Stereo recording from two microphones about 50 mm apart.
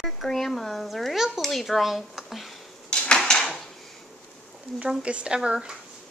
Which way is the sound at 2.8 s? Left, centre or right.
Centre.